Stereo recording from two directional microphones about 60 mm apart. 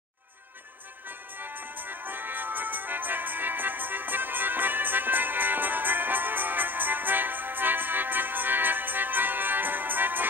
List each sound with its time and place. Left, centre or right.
1.0 s music: right